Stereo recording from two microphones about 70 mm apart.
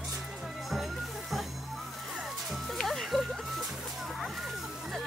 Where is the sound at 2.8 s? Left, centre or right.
Centre.